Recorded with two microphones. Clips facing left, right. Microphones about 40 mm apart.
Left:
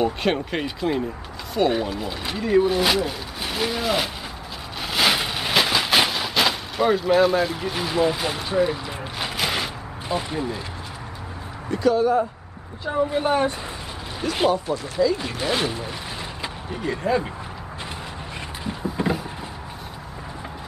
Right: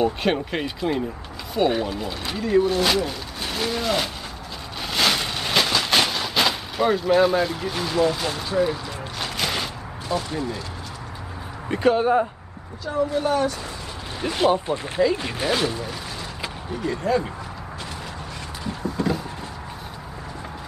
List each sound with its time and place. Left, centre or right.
0.0 s speech: centre
4.8 s a sound: centre
10.0 s speech: left
11.7 s speech: right
12.8 s speech: left
14.5 s speech: right
15.1 s speech: centre
15.6 s speech: centre
18.6 s a sound: centre